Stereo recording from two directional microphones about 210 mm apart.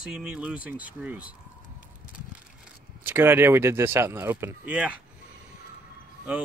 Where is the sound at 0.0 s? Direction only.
5° right (ahead or behind).